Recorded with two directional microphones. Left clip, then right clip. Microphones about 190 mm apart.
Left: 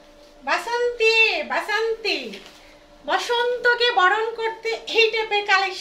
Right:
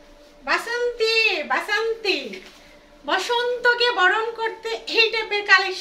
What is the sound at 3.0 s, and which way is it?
A woman's voice, 20° right (ahead or behind).